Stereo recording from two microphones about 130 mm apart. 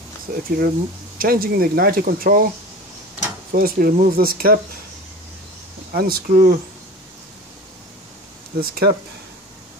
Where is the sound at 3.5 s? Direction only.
90° right.